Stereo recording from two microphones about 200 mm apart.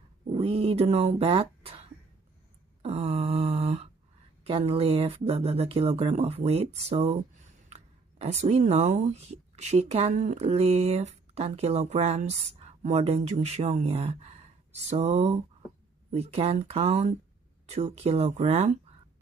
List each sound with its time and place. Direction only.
0.3 s speech: 30° right (ahead or behind)
2.8 s a sound: 30° right (ahead or behind)
4.5 s speech: 30° right (ahead or behind)